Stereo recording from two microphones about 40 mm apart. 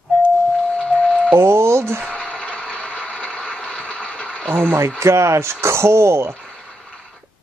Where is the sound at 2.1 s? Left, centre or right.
Left.